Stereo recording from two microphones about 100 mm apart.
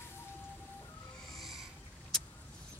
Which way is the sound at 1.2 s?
Centre (ahead or behind).